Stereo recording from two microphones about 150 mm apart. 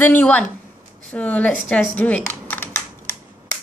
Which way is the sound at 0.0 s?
10° left (ahead or behind).